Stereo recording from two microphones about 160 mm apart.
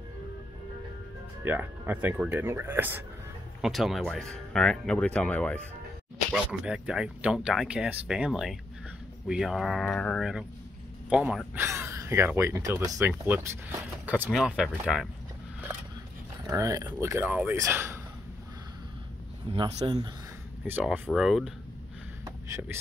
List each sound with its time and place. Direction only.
1.4 s speech: 10° right (ahead or behind)
3.6 s speech: centre (ahead or behind)
6.3 s speech: 5° right (ahead or behind)
16.4 s speech: 20° right (ahead or behind)
19.5 s speech: 30° right (ahead or behind)
20.6 s speech: 10° right (ahead or behind)
21.1 s speech: centre (ahead or behind)
22.2 s vehicle: 15° right (ahead or behind)